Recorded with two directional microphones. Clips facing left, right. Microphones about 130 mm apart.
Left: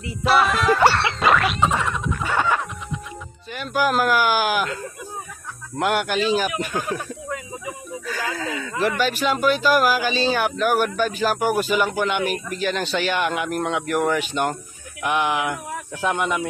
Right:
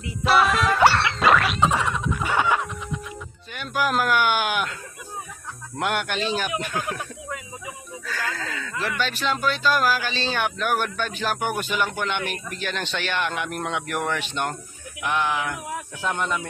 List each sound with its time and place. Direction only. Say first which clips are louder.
0.0 s music: left 1 dB; centre (ahead or behind)
2.2 s music: left 1 dB; 15° right (ahead or behind)
3.5 s speech: left 3 dB; centre (ahead or behind)
5.8 s speech: left 4 dB; 5° left (ahead or behind)
8.1 s a sound: left 3 dB; 15° left (ahead or behind)
9.0 s speech: left 3 dB; 10° left (ahead or behind)
15.0 s speech: left 3 dB; 15° left (ahead or behind)